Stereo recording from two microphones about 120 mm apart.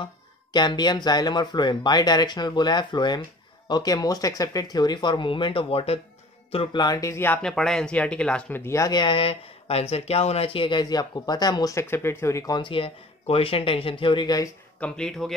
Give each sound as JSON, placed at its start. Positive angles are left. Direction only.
{"t": 0.0, "sound": "speech", "side_deg": 40}
{"t": 6.8, "sound": "speech", "side_deg": 30}
{"t": 7.4, "sound": "speech", "side_deg": 5}
{"t": 8.9, "sound": "speech", "side_deg": 45}
{"t": 11.8, "sound": "speech", "side_deg": 20}
{"t": 12.5, "sound": "speech", "side_deg": 45}
{"t": 14.8, "sound": "speech", "side_deg": 5}